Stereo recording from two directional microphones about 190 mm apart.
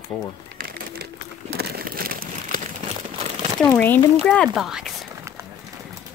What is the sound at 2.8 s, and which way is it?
Crumpling, 30° right (ahead or behind).